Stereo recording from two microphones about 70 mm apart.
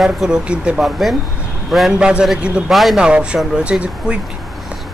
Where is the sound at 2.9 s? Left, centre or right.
Centre.